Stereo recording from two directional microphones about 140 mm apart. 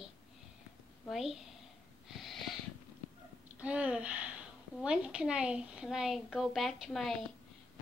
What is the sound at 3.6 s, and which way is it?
A woman's voice, 10° right (ahead or behind).